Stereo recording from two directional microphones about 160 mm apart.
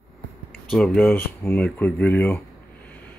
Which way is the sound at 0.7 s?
5° left (ahead or behind).